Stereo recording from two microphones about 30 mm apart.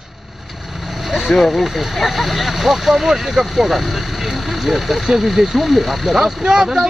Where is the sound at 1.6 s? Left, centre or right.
Centre.